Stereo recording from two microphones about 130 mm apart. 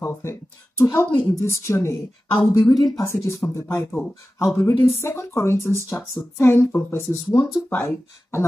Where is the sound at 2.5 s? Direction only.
35° left (ahead or behind).